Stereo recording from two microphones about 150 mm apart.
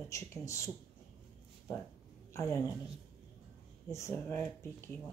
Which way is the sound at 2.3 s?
20° left (ahead or behind).